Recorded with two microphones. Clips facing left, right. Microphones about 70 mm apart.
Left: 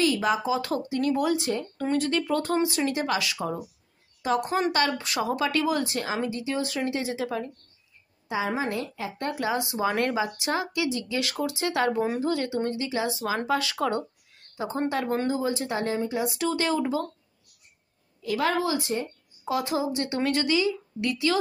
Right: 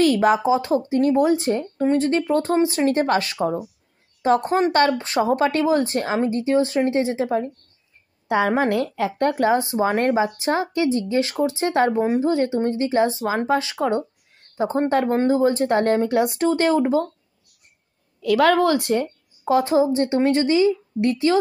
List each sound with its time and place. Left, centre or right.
0.0 s speech: right
0.5 s speech: right
8.3 s a woman's voice: right
9.3 s speech: right
14.6 s speech: right
16.3 s speech: right
18.2 s a woman's voice: right
19.4 s speech: right